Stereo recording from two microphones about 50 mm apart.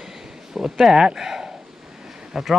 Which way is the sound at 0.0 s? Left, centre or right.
Centre.